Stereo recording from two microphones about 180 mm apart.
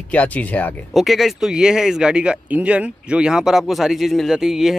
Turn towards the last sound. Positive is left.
turn(degrees=0)  # may be behind; listen again after turning